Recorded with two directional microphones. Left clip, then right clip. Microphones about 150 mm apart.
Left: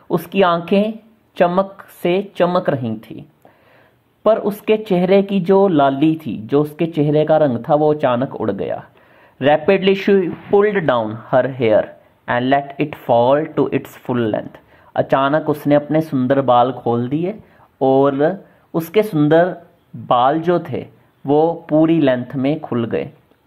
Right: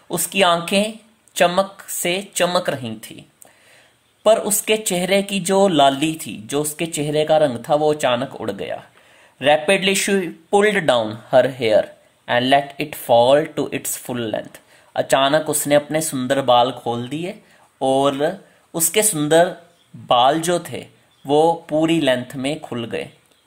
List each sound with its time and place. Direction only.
0.1 s speech: 10° right (ahead or behind)